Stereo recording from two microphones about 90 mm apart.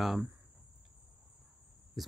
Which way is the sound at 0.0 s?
Centre (ahead or behind).